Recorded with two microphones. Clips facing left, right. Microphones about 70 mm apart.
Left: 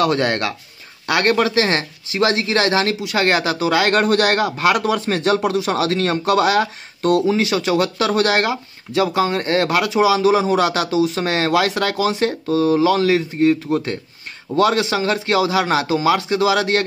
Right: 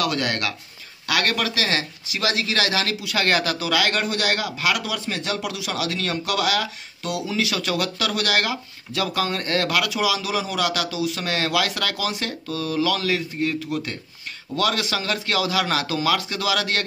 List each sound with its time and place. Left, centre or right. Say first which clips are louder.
0.0 s a man's voice: left 6 dB; left
4.0 s a man's voice: left 8 dB; left